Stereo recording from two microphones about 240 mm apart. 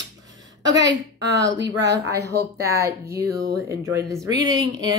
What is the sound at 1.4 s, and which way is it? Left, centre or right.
Speech, right.